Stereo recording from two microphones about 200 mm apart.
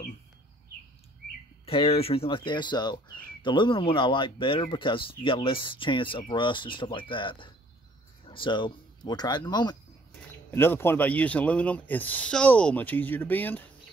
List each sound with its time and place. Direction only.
1.7 s speech: 30° left (ahead or behind); by 13.7 s 10° left (ahead or behind)